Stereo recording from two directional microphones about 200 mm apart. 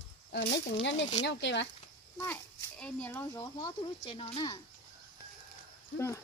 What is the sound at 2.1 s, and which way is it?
A child's voice, 10° left (ahead or behind).